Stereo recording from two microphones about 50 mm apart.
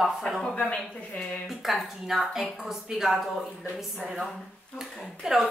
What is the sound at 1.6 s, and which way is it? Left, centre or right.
A woman's voice, centre.